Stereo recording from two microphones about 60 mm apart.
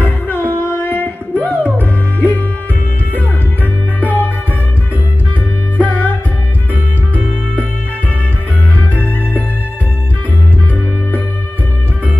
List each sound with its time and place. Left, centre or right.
0.0 s music: left
4.0 s music: left
5.8 s music: left